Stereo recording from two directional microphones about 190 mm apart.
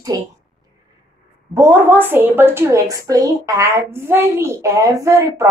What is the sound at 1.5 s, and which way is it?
A woman's voice, 10° right (ahead or behind).